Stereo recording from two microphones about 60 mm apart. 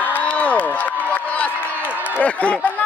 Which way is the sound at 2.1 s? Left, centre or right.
Left.